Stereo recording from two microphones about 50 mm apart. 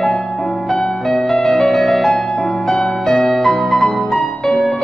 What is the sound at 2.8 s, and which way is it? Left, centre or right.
Music, centre.